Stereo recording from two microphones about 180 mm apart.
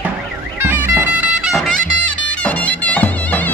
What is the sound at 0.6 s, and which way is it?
Music, 10° right (ahead or behind).